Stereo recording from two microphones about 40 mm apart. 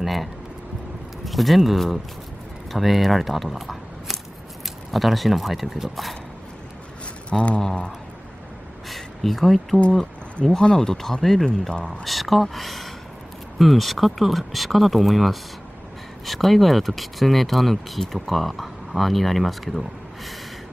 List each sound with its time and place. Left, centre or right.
0.0 s speech: centre
7.3 s speech: centre
8.8 s a sound: centre
10.4 s speech: left; by 19.8 s centre